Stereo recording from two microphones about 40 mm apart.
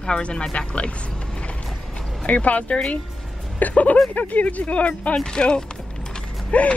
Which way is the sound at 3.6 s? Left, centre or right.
Left.